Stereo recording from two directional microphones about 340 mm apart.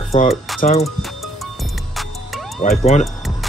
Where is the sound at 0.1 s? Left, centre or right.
Centre.